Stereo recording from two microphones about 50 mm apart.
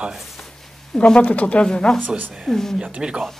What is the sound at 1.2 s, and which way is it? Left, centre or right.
Speech, left.